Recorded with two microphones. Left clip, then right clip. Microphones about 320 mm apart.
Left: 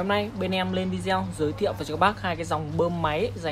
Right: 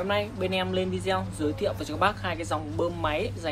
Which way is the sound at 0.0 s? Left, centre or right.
Left.